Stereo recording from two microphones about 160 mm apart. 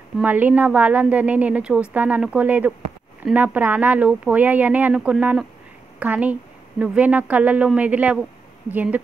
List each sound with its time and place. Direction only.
0.2 s a woman's voice: 10° right (ahead or behind)